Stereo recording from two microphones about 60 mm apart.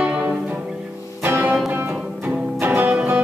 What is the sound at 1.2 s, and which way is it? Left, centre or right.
Music, right.